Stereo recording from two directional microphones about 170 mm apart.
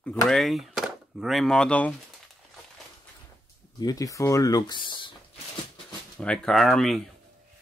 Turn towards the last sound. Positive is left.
turn(degrees=0)  # may be behind; listen again after turning